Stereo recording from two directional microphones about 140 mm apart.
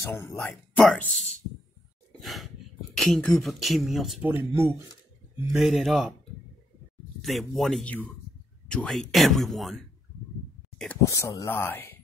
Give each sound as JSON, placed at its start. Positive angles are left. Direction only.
{"t": 0.4, "sound": "speech", "side_deg": 5}
{"t": 2.1, "sound": "gasp", "side_deg": 0}
{"t": 3.0, "sound": "speech", "side_deg": 5}
{"t": 4.2, "sound": "speech", "side_deg": -15}
{"t": 5.4, "sound": "speech", "side_deg": -5}
{"t": 7.2, "sound": "speech", "side_deg": 0}
{"t": 11.1, "sound": "speech", "side_deg": 20}